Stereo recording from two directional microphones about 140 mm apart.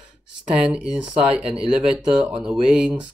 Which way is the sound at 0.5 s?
5° right (ahead or behind).